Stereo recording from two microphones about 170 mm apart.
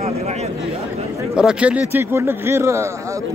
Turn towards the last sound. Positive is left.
turn(degrees=-15)  # may be behind; listen again after turning